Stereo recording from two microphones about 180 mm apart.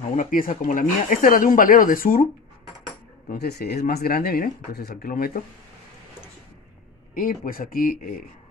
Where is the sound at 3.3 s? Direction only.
65° left (ahead or behind).